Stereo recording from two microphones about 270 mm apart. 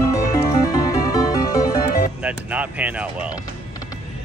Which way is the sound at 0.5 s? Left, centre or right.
Centre.